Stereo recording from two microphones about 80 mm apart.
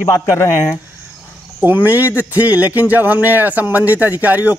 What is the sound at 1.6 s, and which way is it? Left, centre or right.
A man's voice, right.